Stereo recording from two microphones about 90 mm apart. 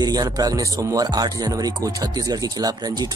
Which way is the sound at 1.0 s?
50° right (ahead or behind).